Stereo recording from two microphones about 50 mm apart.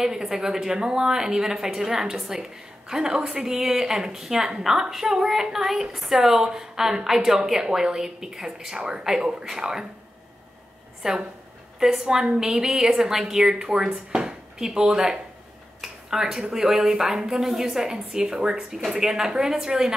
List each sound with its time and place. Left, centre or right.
0.0 s a woman's voice: centre
11.0 s a woman's voice: centre
14.1 s dishes: centre
14.9 s a woman's voice: centre
15.8 s a sound: centre
16.5 s a woman's voice: centre